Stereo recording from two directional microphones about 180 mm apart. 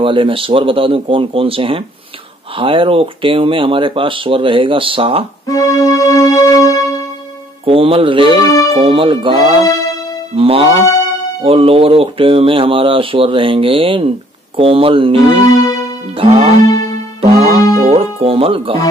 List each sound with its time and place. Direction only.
0.0 s speech: 30° right (ahead or behind)
5.5 s music: 20° left (ahead or behind)
7.6 s speech: 30° right (ahead or behind)
8.5 s speech: 20° left (ahead or behind)
8.7 s speech: 30° right (ahead or behind)
15.5 s music: 20° left (ahead or behind)
16.2 s speech: 35° right (ahead or behind)
17.2 s music: 35° right (ahead or behind)
17.8 s speech: 30° right (ahead or behind)